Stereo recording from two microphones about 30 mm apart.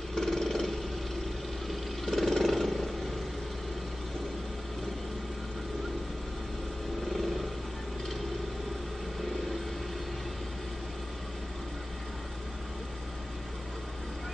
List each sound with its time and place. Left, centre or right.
0.1 s vehicle: centre
2.0 s vehicle: centre